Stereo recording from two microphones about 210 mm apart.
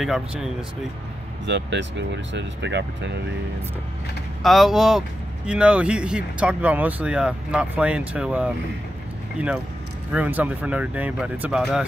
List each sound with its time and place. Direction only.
0.0 s speech: centre (ahead or behind)
1.4 s speech: 60° right (ahead or behind)
4.4 s speech: centre (ahead or behind)